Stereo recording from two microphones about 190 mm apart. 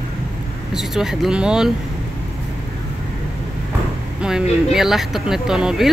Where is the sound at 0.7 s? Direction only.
Centre (ahead or behind).